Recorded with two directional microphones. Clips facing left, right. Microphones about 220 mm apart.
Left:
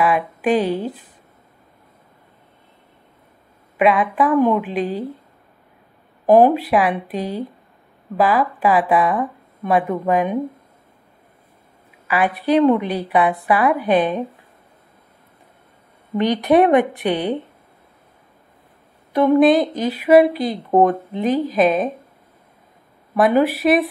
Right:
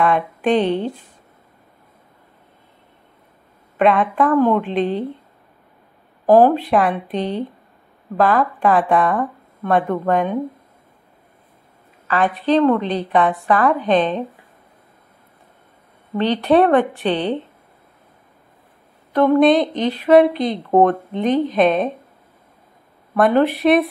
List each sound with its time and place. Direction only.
0.0 s a woman's voice: 5° left (ahead or behind)
3.7 s a woman's voice: 5° left (ahead or behind)
6.2 s a woman's voice: 15° left (ahead or behind)
12.1 s a woman's voice: 10° left (ahead or behind)
16.2 s a woman's voice: 15° left (ahead or behind)
19.1 s a woman's voice: 10° left (ahead or behind)
23.1 s a woman's voice: 5° left (ahead or behind)